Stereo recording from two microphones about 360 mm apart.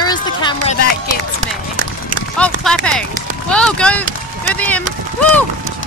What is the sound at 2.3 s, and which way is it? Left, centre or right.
A woman's voice, centre.